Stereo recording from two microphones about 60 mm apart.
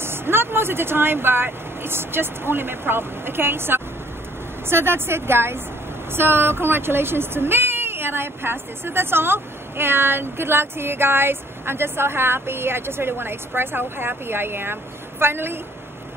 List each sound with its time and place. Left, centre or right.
0.0 s speech: right